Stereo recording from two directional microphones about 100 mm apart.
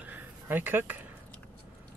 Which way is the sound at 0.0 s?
20° right (ahead or behind).